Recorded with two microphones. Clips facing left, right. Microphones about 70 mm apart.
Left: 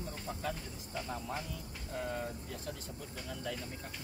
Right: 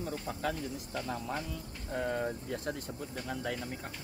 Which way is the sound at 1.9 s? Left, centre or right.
Right.